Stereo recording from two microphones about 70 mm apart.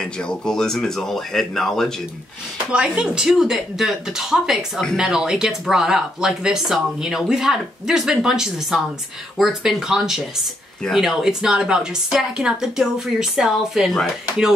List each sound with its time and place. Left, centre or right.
0.0 s speech: centre
2.7 s speech: centre